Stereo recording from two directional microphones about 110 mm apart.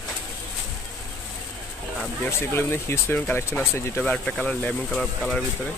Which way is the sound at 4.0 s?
10° left (ahead or behind).